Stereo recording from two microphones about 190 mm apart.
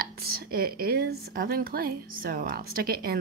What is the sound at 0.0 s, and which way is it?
A woman's voice, 55° right (ahead or behind).